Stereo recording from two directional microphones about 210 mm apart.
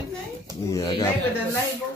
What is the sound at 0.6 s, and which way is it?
Speech, 15° left (ahead or behind).